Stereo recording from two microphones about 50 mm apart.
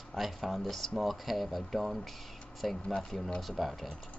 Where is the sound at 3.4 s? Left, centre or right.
Centre.